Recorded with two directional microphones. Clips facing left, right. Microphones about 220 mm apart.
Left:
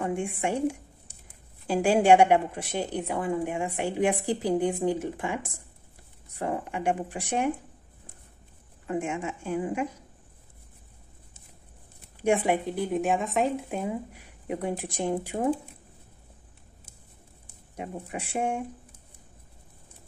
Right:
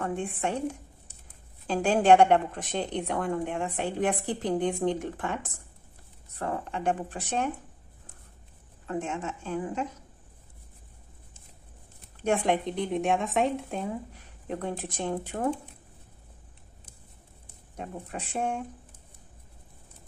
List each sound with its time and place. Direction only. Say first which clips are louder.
0.0 s speech: left 2 dB; 10° left (ahead or behind)
8.8 s speech: left 2 dB; 10° left (ahead or behind)
12.2 s speech: left 2 dB; 10° left (ahead or behind)
17.7 s speech: left 2 dB; 10° left (ahead or behind)